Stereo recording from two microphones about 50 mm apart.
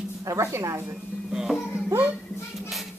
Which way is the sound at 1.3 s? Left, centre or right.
Centre.